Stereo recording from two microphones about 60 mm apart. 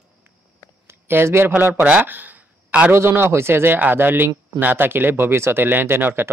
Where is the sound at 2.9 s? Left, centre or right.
Right.